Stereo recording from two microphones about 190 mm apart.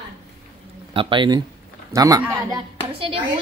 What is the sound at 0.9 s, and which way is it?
A woman's voice, 25° right (ahead or behind).